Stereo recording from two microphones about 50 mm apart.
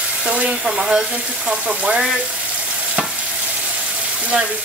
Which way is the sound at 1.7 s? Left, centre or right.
Right.